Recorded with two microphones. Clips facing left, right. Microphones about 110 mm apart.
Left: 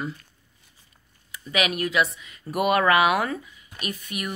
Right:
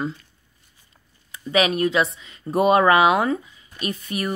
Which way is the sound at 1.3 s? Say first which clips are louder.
Right 6 dB; 30° right (ahead or behind).